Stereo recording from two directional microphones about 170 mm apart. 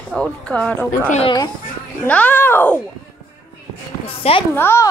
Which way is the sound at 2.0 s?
10° left (ahead or behind).